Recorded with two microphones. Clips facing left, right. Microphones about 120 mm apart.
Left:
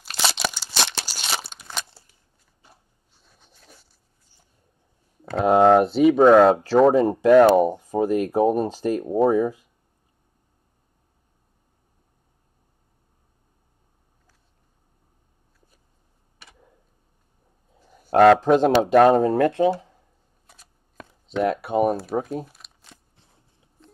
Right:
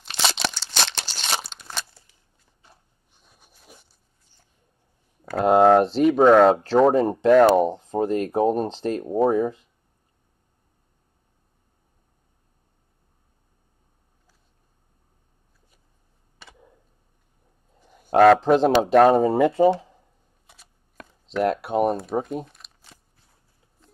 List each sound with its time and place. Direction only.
0.0 s crunch: 5° left (ahead or behind)
3.1 s rub: 15° right (ahead or behind)
5.4 s speech: centre (ahead or behind)
18.1 s speech: centre (ahead or behind)
20.4 s scissors: centre (ahead or behind)
21.4 s speech: centre (ahead or behind)